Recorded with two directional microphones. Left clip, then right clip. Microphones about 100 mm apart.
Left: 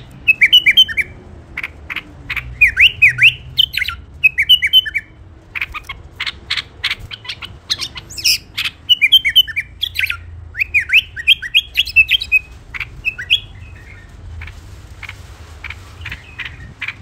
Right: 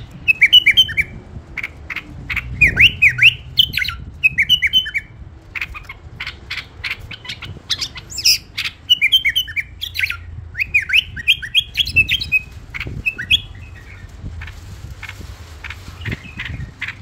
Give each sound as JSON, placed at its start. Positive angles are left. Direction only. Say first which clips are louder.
{"t": 0.2, "sound": "bird", "louder": "left 1 dB", "side_deg": 35}
{"t": 1.5, "sound": "a sound", "louder": "left 1 dB", "side_deg": 35}
{"t": 2.2, "sound": "squawk", "louder": "left 2 dB", "side_deg": 25}
{"t": 3.5, "sound": "bird", "louder": "even", "side_deg": 20}
{"t": 3.8, "sound": "bird", "louder": "left 2 dB", "side_deg": 30}
{"t": 7.2, "sound": "bird", "louder": "left 2 dB", "side_deg": 30}
{"t": 8.5, "sound": "bird", "louder": "left 2 dB", "side_deg": 45}
{"t": 9.0, "sound": "bird", "louder": "left 8 dB", "side_deg": 35}
{"t": 11.0, "sound": "bird", "louder": "left 3 dB", "side_deg": 40}
{"t": 15.0, "sound": "a sound", "louder": "left 1 dB", "side_deg": 15}